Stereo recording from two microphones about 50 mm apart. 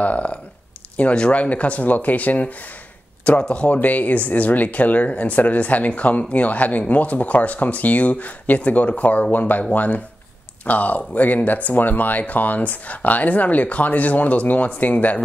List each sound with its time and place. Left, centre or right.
0.0 s speech: left